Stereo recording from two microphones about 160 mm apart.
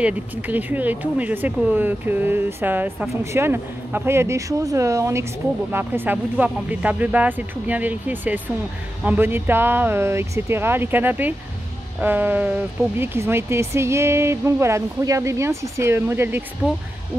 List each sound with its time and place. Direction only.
0.0 s speech: 10° right (ahead or behind)